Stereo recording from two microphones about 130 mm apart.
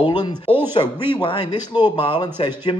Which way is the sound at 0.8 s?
35° left (ahead or behind).